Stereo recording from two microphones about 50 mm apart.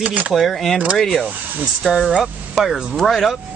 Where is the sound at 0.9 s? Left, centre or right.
Centre.